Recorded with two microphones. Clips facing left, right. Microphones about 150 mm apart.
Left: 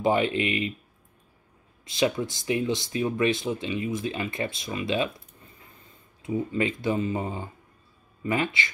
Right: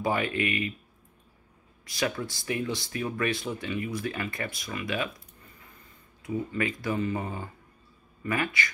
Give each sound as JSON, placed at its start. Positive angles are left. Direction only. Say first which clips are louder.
{"t": 0.0, "sound": "speech", "louder": "left 4 dB", "side_deg": 20}
{"t": 1.9, "sound": "speech", "louder": "left 5 dB", "side_deg": 20}
{"t": 6.2, "sound": "speech", "louder": "left 3 dB", "side_deg": 25}